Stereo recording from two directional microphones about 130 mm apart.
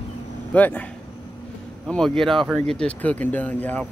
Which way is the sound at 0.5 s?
10° left (ahead or behind).